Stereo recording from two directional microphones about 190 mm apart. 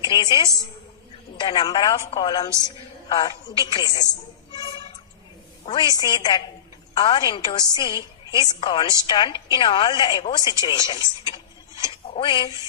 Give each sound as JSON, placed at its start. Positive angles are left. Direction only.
{"t": 0.0, "sound": "a woman's voice", "side_deg": 25}